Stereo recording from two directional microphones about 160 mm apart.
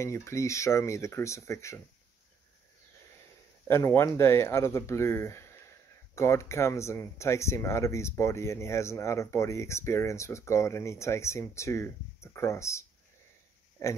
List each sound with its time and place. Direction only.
0.0 s speech: 15° left (ahead or behind)
3.6 s speech: 15° left (ahead or behind)